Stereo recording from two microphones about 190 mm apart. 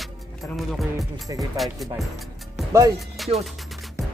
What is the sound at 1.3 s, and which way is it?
Speech, 20° right (ahead or behind).